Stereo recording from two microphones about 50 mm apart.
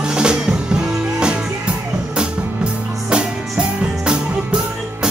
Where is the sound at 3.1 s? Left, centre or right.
Centre.